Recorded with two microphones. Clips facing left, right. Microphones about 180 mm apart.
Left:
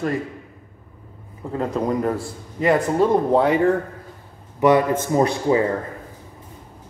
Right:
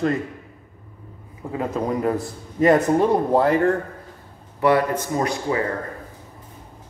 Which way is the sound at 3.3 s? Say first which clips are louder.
Left 1 dB; centre (ahead or behind).